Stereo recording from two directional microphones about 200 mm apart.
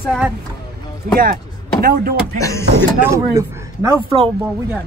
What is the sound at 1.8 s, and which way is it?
Speech, 50° right (ahead or behind).